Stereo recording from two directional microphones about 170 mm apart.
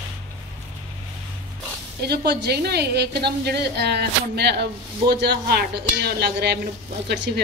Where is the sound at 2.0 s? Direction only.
70° right (ahead or behind).